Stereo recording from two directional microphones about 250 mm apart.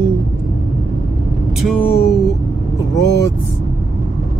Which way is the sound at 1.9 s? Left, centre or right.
Left.